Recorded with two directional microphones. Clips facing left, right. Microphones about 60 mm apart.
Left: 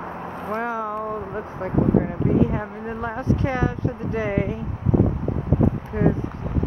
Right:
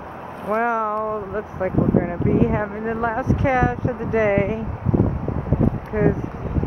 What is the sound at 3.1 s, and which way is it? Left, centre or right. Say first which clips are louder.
Speech: right 2 dB; centre.